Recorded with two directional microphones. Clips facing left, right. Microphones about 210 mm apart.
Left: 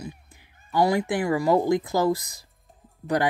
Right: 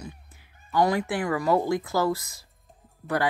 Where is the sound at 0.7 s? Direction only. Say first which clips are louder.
Left 2 dB; 10° left (ahead or behind).